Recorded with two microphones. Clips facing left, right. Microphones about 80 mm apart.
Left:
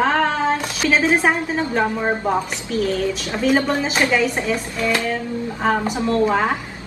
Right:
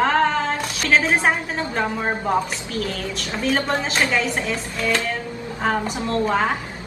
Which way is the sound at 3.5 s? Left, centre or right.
Centre.